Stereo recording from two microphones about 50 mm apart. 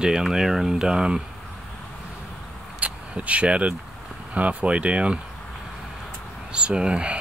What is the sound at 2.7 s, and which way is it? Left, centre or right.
Vehicle, right.